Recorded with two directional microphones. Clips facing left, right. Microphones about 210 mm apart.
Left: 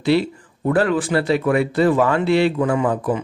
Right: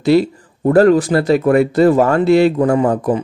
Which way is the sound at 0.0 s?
40° right (ahead or behind).